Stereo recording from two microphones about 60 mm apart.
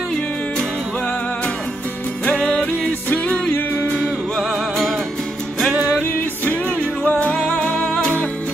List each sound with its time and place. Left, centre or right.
2.2 s music: centre
4.4 s music: centre
6.4 s music: left